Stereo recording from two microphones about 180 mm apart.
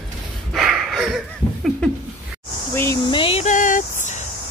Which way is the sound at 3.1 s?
30° left (ahead or behind).